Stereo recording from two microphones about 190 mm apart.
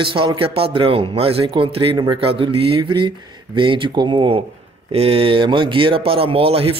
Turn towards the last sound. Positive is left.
turn(degrees=-30)  # may be behind; listen again after turning